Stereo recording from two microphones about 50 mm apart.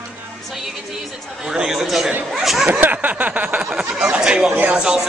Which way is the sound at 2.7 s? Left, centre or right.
Right.